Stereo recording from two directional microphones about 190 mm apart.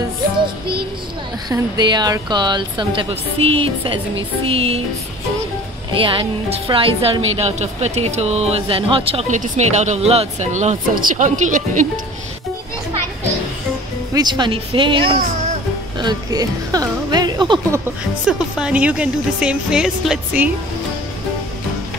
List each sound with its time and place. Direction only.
1.5 s speech: 20° right (ahead or behind)
5.9 s speech: 25° right (ahead or behind); by 11.9 s 40° right (ahead or behind)
14.1 s speech: 25° right (ahead or behind)
18.2 s speech: 5° right (ahead or behind)